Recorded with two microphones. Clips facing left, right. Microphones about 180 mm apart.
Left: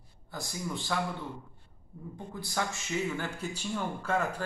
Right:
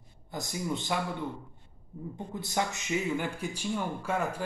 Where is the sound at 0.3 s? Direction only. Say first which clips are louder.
Right 4 dB; 20° right (ahead or behind).